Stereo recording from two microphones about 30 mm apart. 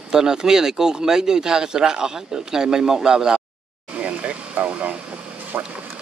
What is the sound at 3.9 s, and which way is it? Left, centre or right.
Vehicle, right.